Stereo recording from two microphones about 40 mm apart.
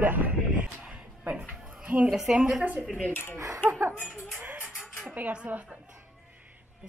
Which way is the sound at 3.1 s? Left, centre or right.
Left.